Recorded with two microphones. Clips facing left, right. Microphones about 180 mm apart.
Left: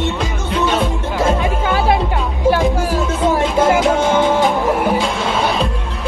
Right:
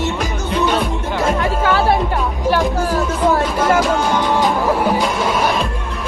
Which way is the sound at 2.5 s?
20° left (ahead or behind).